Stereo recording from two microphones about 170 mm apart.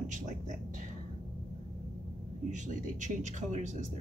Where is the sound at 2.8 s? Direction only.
45° right (ahead or behind).